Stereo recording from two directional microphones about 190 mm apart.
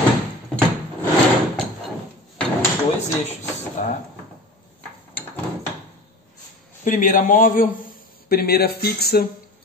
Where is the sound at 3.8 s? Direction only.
45° left (ahead or behind).